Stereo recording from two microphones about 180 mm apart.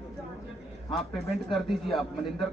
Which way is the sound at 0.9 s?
Centre (ahead or behind).